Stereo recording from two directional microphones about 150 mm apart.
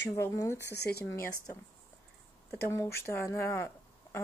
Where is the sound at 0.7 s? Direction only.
90° left.